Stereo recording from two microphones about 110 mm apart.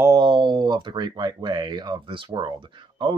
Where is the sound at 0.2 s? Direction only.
45° right (ahead or behind).